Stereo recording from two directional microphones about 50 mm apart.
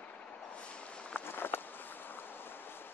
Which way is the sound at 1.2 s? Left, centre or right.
Left.